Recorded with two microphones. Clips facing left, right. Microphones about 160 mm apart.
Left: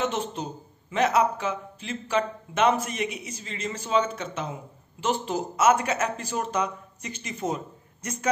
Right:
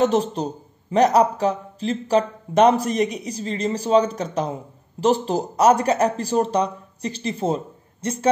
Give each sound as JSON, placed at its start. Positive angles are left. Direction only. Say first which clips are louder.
{"t": 0.0, "sound": "a man's voice", "louder": "right 9 dB", "side_deg": -35}